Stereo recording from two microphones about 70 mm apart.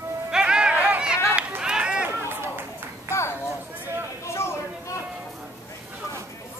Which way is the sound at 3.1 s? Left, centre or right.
Left.